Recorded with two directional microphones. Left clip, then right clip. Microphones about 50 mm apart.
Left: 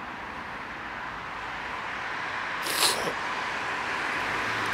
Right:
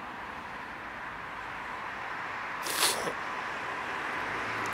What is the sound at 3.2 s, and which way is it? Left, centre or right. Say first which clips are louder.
Vehicle: left 5 dB; left.